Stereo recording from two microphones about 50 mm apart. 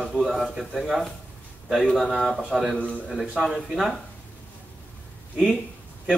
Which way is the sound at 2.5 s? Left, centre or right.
Centre.